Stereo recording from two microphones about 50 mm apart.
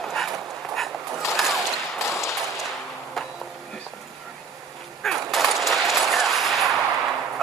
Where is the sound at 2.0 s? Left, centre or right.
Left.